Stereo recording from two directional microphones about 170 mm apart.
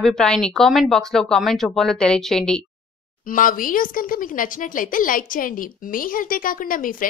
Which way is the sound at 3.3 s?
55° left (ahead or behind).